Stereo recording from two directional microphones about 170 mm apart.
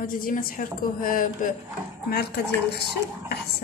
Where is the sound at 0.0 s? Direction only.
55° left (ahead or behind).